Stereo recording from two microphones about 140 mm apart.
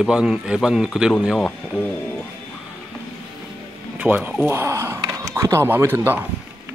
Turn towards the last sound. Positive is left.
turn(degrees=-15)  # may be behind; listen again after turning